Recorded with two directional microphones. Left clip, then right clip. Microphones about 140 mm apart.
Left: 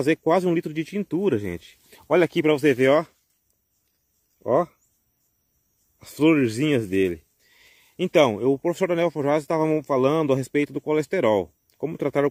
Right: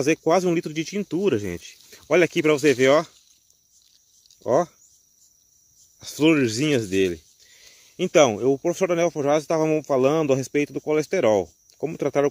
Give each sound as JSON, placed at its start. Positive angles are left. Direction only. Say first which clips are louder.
{"t": 0.0, "sound": "speech", "louder": "right 1 dB", "side_deg": 15}
{"t": 4.4, "sound": "speech", "louder": "right 1 dB", "side_deg": 10}
{"t": 5.9, "sound": "speech", "louder": "even", "side_deg": 15}